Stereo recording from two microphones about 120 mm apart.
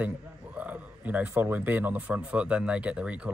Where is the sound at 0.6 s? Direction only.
15° right (ahead or behind).